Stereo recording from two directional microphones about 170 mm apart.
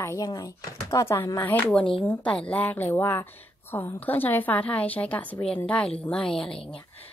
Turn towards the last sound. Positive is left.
turn(degrees=30)  # may be behind; listen again after turning